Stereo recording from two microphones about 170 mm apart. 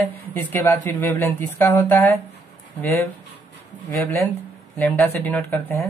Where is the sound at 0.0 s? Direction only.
10° left (ahead or behind).